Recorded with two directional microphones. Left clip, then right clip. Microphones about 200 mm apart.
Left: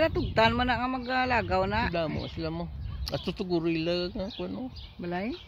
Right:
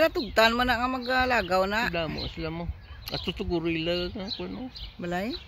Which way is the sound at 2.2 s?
40° left (ahead or behind).